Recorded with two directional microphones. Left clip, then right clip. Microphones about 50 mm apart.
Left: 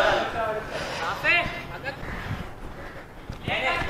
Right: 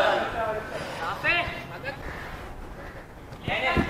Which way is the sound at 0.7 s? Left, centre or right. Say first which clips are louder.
Left 2 dB; left.